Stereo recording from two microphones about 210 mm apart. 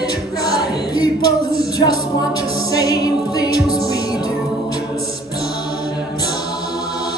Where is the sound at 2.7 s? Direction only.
15° left (ahead or behind).